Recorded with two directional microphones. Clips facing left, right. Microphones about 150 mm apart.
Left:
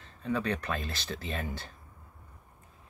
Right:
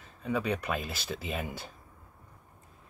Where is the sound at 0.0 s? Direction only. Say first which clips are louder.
Even; 10° right (ahead or behind).